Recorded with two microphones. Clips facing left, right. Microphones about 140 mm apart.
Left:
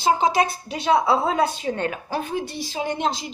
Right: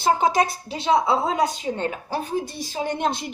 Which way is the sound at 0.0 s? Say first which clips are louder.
Even; 45° right (ahead or behind).